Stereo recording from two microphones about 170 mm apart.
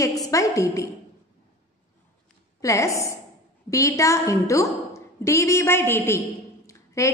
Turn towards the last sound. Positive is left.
turn(degrees=20)  # may be behind; listen again after turning